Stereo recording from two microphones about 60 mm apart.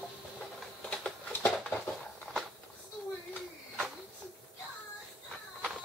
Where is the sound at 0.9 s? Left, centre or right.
Centre.